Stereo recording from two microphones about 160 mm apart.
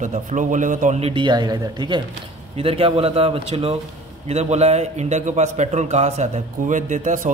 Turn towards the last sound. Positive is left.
turn(degrees=-50)  # may be behind; listen again after turning